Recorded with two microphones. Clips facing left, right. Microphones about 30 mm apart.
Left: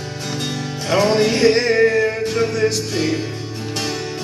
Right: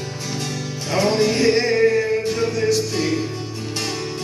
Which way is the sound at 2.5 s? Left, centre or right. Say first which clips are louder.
Even; left.